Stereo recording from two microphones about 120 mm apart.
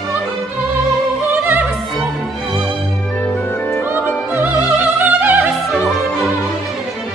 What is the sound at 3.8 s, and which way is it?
Opera, 15° right (ahead or behind).